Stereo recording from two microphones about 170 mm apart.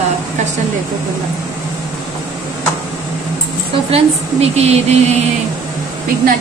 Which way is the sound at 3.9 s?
35° right (ahead or behind).